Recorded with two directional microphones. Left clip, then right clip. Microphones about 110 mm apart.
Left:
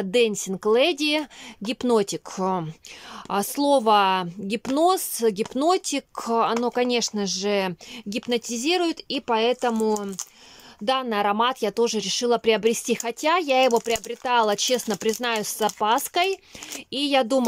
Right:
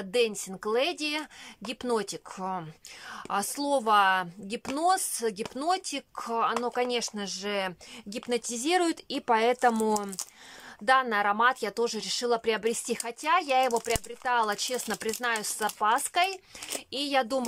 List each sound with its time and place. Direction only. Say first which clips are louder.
0.0 s speech: left 6 dB; 30° left (ahead or behind)
2.3 s speech: left 8 dB; 45° left (ahead or behind)
3.3 s speech: left 7 dB; 30° left (ahead or behind)
8.3 s speech: left 4 dB; 15° left (ahead or behind)
10.9 s speech: left 1 dB; 25° left (ahead or behind)